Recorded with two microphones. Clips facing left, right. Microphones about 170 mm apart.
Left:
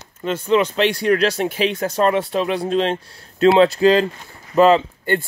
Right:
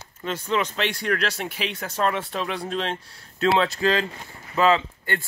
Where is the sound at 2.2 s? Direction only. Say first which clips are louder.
Left 8 dB; 25° left (ahead or behind).